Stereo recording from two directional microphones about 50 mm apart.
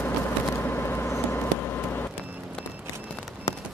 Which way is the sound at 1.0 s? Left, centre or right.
Left.